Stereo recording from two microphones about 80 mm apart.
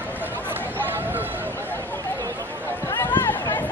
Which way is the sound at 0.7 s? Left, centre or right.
Right.